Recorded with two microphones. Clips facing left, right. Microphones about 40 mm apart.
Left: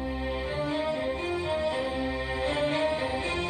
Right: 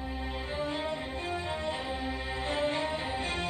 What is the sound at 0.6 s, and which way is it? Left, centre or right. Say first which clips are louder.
Music: left 3 dB; left.